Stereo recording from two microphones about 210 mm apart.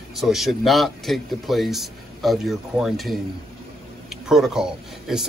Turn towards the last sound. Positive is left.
turn(degrees=-5)  # may be behind; listen again after turning